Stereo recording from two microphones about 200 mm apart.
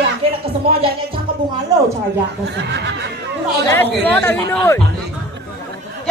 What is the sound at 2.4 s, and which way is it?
Speech, 60° right (ahead or behind).